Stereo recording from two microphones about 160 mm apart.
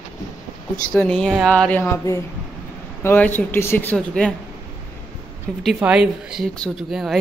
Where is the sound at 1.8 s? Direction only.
15° left (ahead or behind).